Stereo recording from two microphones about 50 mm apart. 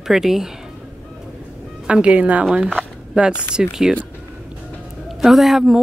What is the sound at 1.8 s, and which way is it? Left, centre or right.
A woman's voice, right.